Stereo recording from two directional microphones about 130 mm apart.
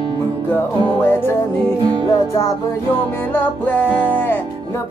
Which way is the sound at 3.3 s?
15° left (ahead or behind).